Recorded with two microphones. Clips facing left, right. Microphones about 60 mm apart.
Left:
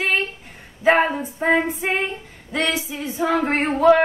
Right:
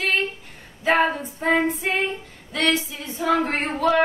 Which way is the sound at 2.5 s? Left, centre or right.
Centre.